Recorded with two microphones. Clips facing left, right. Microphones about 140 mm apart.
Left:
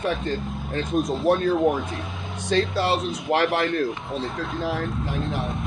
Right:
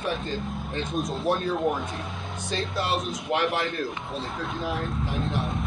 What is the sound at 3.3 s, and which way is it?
Speech, 75° left (ahead or behind).